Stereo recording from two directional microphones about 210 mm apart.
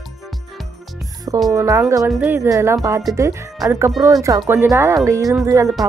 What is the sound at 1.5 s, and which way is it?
A woman's voice, 15° right (ahead or behind).